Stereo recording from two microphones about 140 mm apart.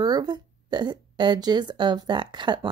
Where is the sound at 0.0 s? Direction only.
30° right (ahead or behind).